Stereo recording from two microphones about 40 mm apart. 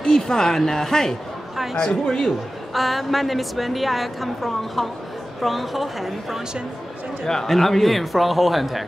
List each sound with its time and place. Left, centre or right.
0.0 s speech: centre
2.7 s a woman's voice: centre
7.2 s a woman's voice: centre